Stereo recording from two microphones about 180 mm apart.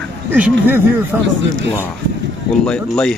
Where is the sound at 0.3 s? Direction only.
10° right (ahead or behind).